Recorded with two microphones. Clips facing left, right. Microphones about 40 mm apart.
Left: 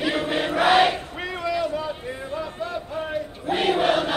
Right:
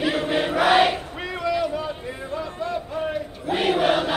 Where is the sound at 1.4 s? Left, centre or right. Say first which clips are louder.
Right 1 dB; centre.